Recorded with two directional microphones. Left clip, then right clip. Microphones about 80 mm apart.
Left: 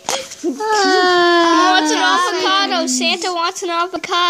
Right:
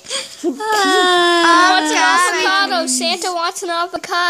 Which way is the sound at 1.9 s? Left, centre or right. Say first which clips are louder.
Right 2 dB; right.